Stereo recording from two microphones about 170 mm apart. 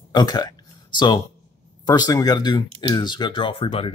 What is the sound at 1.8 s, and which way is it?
Speech, 25° left (ahead or behind).